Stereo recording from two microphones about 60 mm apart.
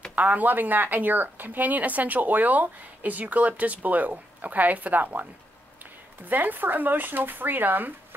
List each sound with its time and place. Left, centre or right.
0.1 s speech: right